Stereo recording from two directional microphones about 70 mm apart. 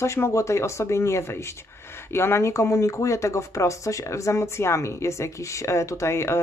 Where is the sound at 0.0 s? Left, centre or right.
Left.